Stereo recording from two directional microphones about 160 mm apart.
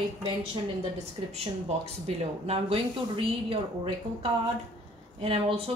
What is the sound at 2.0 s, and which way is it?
A woman's voice, 40° right (ahead or behind).